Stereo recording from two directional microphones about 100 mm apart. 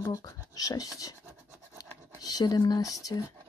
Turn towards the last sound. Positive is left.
turn(degrees=35)  # may be behind; listen again after turning